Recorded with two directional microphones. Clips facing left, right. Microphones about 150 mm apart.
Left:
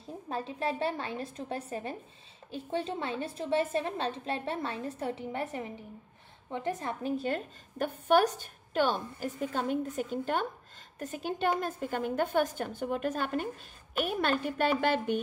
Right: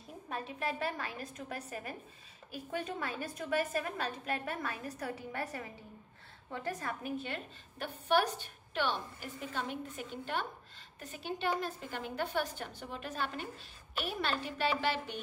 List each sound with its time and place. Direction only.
0.0 s a woman's voice: 30° left (ahead or behind); by 15.1 s 50° left (ahead or behind)